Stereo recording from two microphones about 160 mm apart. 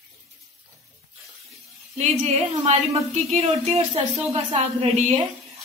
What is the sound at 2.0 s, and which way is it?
A woman's voice, 45° right (ahead or behind).